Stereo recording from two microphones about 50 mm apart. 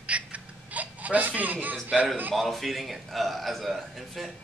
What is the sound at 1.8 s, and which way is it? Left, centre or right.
Speech, right.